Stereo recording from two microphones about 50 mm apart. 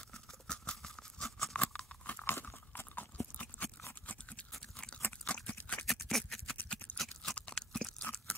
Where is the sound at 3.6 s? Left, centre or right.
Left.